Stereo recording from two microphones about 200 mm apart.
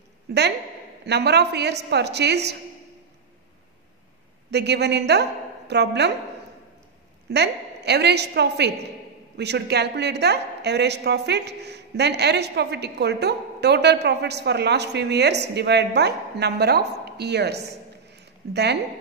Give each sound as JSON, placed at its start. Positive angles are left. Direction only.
{"t": 0.3, "sound": "a woman's voice", "side_deg": -55}
{"t": 4.5, "sound": "a woman's voice", "side_deg": -55}
{"t": 7.2, "sound": "a woman's voice", "side_deg": -55}
{"t": 17.6, "sound": "a sound", "side_deg": -55}